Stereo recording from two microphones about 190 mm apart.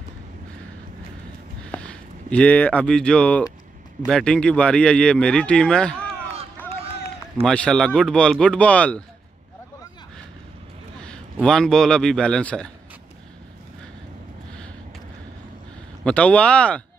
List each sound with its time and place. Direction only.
1.7 s speech: 5° left (ahead or behind)
6.7 s run: 30° right (ahead or behind)
7.4 s speech: 5° left (ahead or behind)
11.4 s speech: 5° left (ahead or behind)
16.0 s speech: 5° left (ahead or behind)